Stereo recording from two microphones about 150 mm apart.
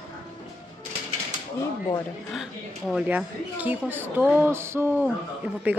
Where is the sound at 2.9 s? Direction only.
10° right (ahead or behind).